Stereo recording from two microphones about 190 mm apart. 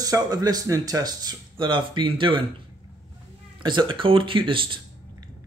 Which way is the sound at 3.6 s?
25° right (ahead or behind).